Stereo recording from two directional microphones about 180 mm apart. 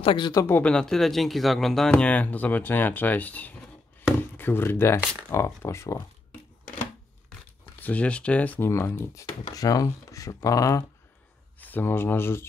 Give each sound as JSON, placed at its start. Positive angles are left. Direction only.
{"t": 0.0, "sound": "speech", "side_deg": 25}
{"t": 7.8, "sound": "speech", "side_deg": 10}